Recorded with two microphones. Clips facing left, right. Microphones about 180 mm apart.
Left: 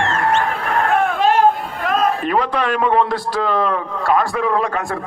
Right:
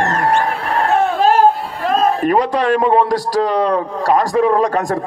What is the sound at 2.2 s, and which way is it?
A man's voice, 40° right (ahead or behind).